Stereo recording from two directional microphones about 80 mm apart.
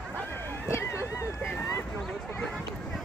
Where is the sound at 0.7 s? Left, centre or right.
Left.